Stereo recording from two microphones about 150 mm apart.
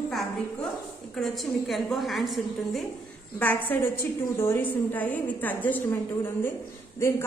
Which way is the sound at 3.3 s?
10° left (ahead or behind).